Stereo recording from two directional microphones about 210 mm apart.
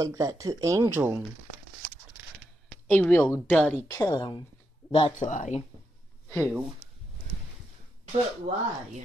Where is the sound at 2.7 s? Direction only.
5° left (ahead or behind); by 4.4 s 20° left (ahead or behind).